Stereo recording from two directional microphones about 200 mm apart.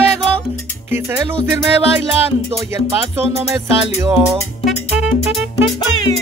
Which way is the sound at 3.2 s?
30° right (ahead or behind).